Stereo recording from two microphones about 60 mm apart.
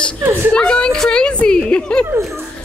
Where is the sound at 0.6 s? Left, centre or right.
Centre.